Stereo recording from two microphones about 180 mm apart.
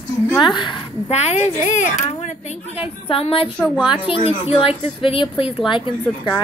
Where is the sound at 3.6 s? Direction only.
5° right (ahead or behind).